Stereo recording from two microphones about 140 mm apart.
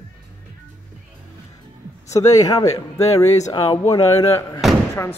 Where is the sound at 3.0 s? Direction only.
50° left (ahead or behind).